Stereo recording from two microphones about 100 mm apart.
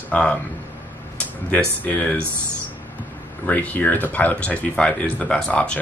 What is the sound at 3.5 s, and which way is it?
Speech, 15° left (ahead or behind).